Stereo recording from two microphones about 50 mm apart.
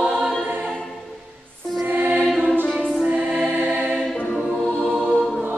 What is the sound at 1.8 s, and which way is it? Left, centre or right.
Music, right.